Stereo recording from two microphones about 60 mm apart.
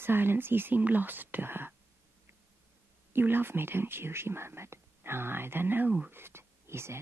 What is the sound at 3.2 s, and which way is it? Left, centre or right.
Speech, right.